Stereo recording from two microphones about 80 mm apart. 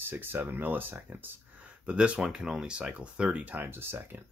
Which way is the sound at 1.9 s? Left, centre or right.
Centre.